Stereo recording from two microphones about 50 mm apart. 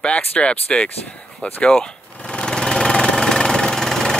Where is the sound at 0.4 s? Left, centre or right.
Left.